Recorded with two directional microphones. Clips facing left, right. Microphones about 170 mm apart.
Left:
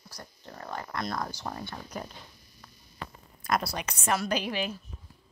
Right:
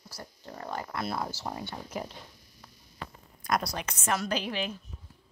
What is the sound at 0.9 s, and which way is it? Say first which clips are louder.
Speech: left 1 dB; 5° right (ahead or behind).